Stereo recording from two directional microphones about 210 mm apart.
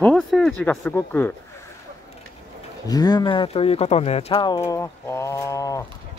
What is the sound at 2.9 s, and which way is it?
Speech, 20° left (ahead or behind).